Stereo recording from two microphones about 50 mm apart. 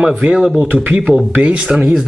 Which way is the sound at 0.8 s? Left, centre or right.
Centre.